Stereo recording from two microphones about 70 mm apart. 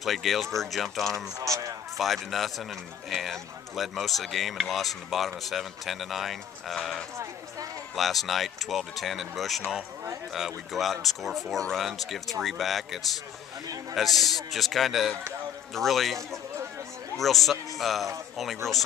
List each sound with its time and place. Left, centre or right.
0.0 s speech: centre
1.4 s speech: right
2.0 s speech: centre
17.5 s speech: centre